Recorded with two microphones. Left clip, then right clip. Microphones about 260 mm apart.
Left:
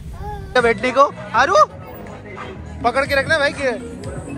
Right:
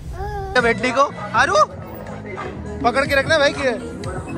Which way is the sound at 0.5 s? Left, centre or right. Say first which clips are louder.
Left 2 dB; centre.